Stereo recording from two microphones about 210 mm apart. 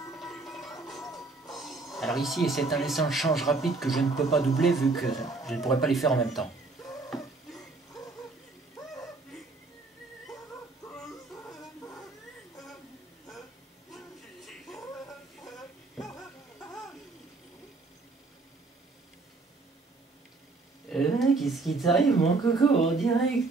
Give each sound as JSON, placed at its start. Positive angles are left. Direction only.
{"t": 0.5, "sound": "music", "side_deg": 0}
{"t": 1.0, "sound": "music", "side_deg": 15}
{"t": 1.5, "sound": "music", "side_deg": 0}
{"t": 1.9, "sound": "speech", "side_deg": 0}
{"t": 7.1, "sound": "a sound", "side_deg": 0}
{"t": 11.4, "sound": "a sound", "side_deg": 15}
{"t": 13.9, "sound": "music", "side_deg": 0}
{"t": 20.9, "sound": "a sound", "side_deg": 0}
{"t": 22.7, "sound": "speech", "side_deg": 0}